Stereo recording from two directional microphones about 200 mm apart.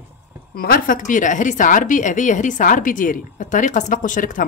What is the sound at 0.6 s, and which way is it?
A woman's voice, 45° left (ahead or behind).